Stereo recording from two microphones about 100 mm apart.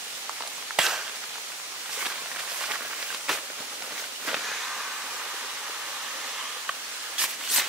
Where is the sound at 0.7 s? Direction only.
5° right (ahead or behind).